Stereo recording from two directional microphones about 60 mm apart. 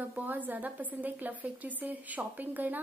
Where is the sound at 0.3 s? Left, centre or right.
Right.